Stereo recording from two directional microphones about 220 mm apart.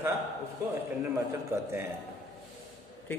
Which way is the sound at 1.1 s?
10° right (ahead or behind).